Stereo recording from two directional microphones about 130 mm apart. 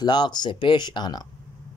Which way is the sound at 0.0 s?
35° left (ahead or behind).